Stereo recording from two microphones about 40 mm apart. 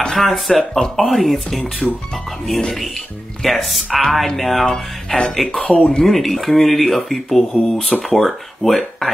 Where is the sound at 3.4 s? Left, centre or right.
Centre.